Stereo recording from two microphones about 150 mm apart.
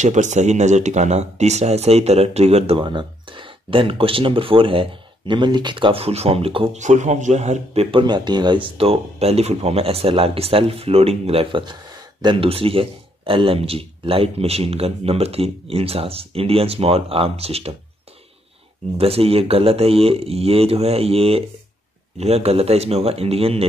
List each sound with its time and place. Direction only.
0.0 s speech: 50° right (ahead or behind)
6.8 s speech: 50° right (ahead or behind)
18.9 s speech: 40° right (ahead or behind)